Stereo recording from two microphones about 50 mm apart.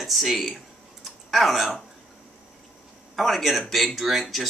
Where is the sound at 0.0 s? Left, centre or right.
Centre.